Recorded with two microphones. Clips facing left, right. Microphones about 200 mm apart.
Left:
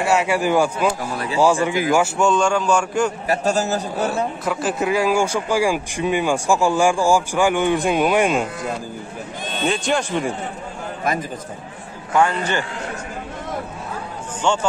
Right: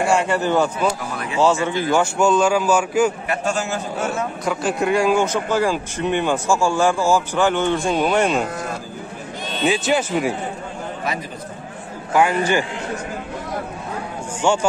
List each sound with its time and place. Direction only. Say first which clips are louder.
0.0 s speech: even; 5° left (ahead or behind)
1.1 s a man's voice: left 2 dB; 35° left (ahead or behind)
1.4 s speech: left 1 dB; 10° left (ahead or behind)
2.1 s a man's voice: right 1 dB; centre (ahead or behind)
3.3 s a man's voice: left 3 dB; 40° left (ahead or behind)
4.5 s speech: right 3 dB; centre (ahead or behind)
9.7 s a man's voice: right 2 dB; 5° right (ahead or behind)
12.1 s a man's voice: right 2 dB; 10° right (ahead or behind)
14.4 s speech: right 2 dB; 10° right (ahead or behind)